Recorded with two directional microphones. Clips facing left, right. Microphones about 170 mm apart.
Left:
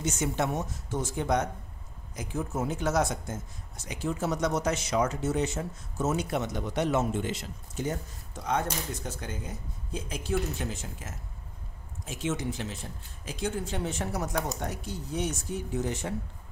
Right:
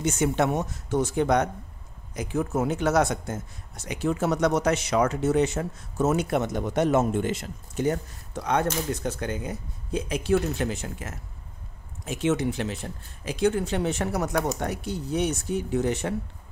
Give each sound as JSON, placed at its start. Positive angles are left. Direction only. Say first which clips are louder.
{"t": 0.0, "sound": "speech", "louder": "right 6 dB", "side_deg": -70}